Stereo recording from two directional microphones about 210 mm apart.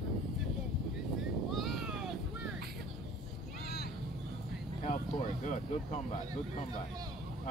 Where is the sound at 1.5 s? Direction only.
Centre (ahead or behind).